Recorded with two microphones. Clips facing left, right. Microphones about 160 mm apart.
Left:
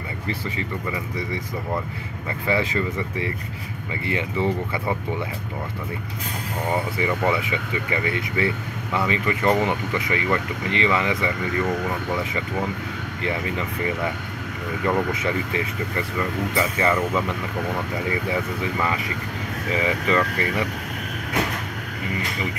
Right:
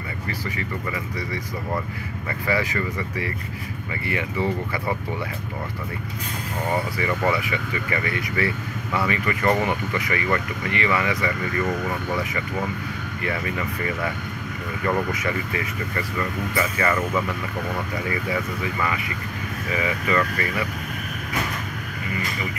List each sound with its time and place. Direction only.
2.4 s speech: 25° left (ahead or behind)
6.7 s speech: 15° left (ahead or behind)
13.2 s speech: 20° left (ahead or behind)